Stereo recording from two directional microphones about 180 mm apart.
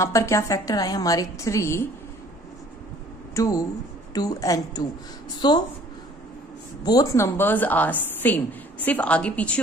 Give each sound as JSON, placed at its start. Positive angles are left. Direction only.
{"t": 0.0, "sound": "a woman's voice", "side_deg": 15}
{"t": 3.3, "sound": "a woman's voice", "side_deg": 20}
{"t": 6.8, "sound": "a woman's voice", "side_deg": 20}